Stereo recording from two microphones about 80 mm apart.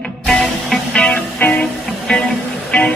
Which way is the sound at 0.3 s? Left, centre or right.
Centre.